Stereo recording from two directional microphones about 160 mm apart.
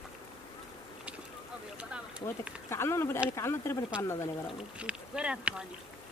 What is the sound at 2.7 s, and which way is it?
Speech, 15° left (ahead or behind).